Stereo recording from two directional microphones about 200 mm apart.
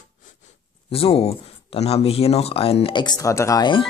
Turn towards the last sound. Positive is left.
turn(degrees=20)  # may be behind; listen again after turning